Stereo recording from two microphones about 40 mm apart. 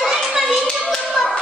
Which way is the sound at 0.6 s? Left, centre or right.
Centre.